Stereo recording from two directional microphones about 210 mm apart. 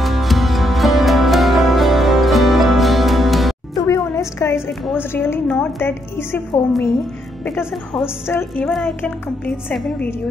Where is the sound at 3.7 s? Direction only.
15° left (ahead or behind).